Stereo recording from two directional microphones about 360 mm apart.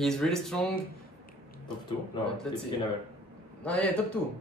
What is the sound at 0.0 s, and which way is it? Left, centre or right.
Speech, centre.